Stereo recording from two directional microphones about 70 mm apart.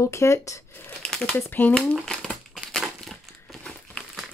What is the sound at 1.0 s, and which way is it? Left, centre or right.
Crumpling, centre.